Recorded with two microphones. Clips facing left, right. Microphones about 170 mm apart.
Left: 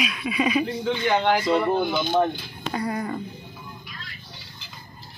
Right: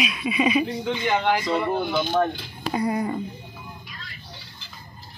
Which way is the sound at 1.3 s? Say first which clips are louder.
Left 2 dB; centre (ahead or behind).